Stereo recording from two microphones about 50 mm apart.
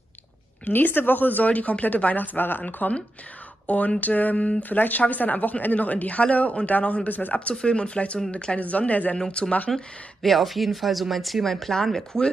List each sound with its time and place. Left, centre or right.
0.7 s speech: left
9.1 s speech: centre
10.2 s speech: centre